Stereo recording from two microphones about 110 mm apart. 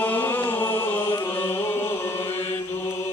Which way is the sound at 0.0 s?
20° left (ahead or behind).